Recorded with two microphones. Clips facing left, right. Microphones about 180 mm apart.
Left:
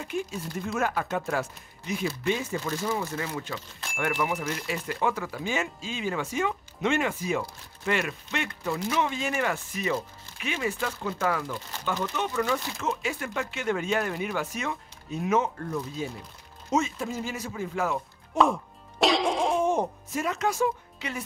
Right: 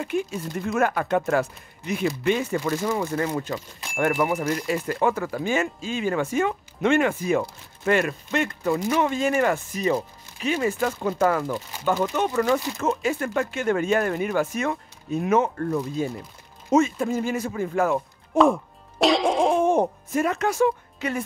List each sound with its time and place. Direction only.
0.0 s speech: 60° right (ahead or behind)
2.9 s speech: 50° right (ahead or behind)
18.4 s music: centre (ahead or behind)
19.6 s speech: 55° right (ahead or behind)